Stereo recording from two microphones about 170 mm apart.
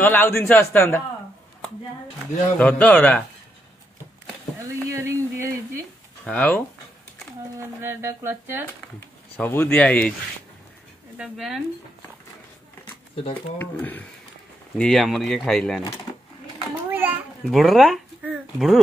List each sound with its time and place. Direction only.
0.0 s a man's voice: 10° left (ahead or behind)
2.6 s a man's voice: 10° left (ahead or behind)
4.8 s sizzle: 15° right (ahead or behind)
6.2 s a man's voice: 10° left (ahead or behind)
7.5 s speech: 15° right (ahead or behind)
9.4 s a man's voice: 10° left (ahead or behind)
11.1 s speech: centre (ahead or behind)
13.6 s a man's voice: 10° left (ahead or behind)
16.9 s a sound: 10° right (ahead or behind)
17.5 s speech: centre (ahead or behind)